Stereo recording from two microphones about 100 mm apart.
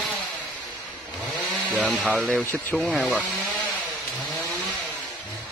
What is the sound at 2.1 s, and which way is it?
Speech, centre (ahead or behind).